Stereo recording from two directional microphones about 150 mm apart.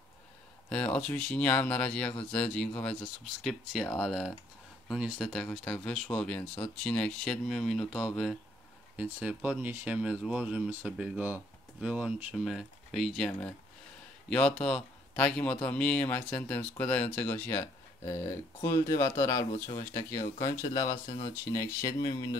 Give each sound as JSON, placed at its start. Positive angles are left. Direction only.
{"t": 0.7, "sound": "speech", "side_deg": 10}